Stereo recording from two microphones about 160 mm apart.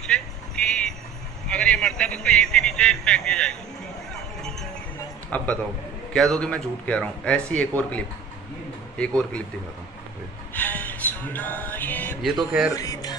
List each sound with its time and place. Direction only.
0.0 s music: 5° left (ahead or behind)
1.5 s speech: 5° left (ahead or behind)
5.3 s speech: 10° left (ahead or behind)
10.5 s music: 10° left (ahead or behind)
12.2 s speech: centre (ahead or behind)
12.7 s music: 20° left (ahead or behind)